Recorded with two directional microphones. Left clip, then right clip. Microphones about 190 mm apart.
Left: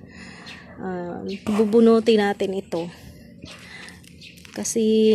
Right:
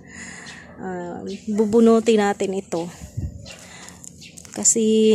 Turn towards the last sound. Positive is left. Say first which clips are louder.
# right 2 dB
turn(degrees=-20)  # may be behind; listen again after turning